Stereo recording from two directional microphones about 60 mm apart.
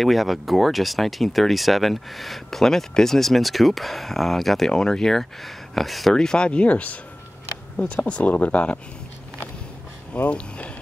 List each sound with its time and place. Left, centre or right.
0.0 s speech: centre
6.1 s speech: centre
10.1 s speech: left